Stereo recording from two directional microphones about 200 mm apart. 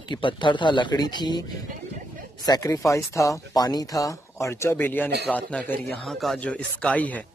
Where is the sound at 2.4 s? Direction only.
15° left (ahead or behind).